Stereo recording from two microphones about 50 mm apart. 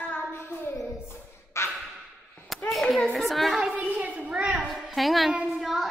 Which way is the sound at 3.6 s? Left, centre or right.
Centre.